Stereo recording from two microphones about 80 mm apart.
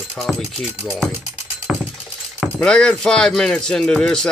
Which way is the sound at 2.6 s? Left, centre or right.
Centre.